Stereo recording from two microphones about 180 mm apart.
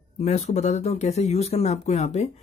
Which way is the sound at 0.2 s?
40° left (ahead or behind).